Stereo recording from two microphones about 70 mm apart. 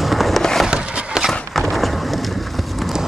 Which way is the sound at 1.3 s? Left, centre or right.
Centre.